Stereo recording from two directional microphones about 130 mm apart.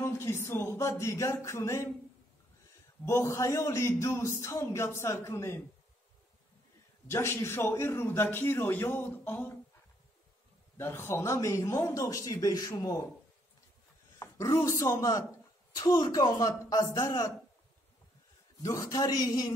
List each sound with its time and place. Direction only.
0.0 s speech: 20° left (ahead or behind)
3.1 s a man's voice: 20° left (ahead or behind)
7.1 s a man's voice: 20° left (ahead or behind)
10.8 s a man's voice: 20° left (ahead or behind)
14.2 s a man's voice: 25° left (ahead or behind)
18.6 s a man's voice: 25° left (ahead or behind)